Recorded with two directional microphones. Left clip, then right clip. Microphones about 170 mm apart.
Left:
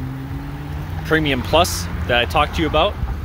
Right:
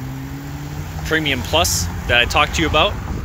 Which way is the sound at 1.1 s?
30° left (ahead or behind).